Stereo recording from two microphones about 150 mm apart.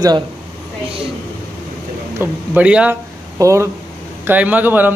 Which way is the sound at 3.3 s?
20° right (ahead or behind).